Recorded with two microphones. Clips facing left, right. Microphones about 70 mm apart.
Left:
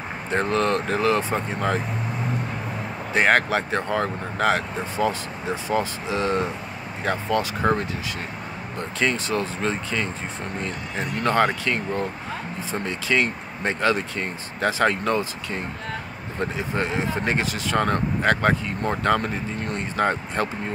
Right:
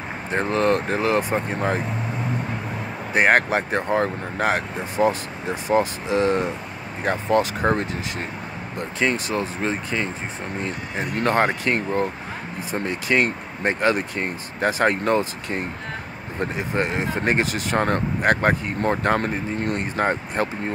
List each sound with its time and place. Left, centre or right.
0.3 s speech: right
3.1 s speech: right
9.0 s speech: right
11.1 s speech: right
20.4 s speech: right